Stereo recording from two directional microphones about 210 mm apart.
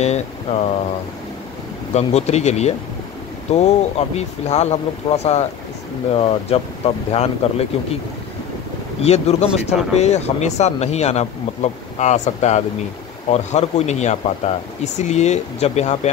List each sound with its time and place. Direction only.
0.0 s speech: 30° left (ahead or behind)
2.0 s speech: 30° left (ahead or behind)
9.0 s speech: 30° left (ahead or behind)